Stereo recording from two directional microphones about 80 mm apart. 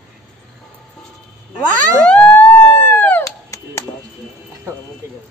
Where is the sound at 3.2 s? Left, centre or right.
Left.